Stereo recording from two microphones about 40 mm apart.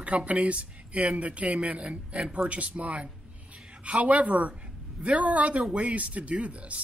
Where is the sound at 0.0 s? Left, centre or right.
Right.